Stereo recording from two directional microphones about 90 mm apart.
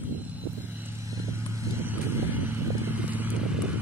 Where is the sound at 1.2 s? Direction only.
30° right (ahead or behind); by 3.8 s 15° right (ahead or behind).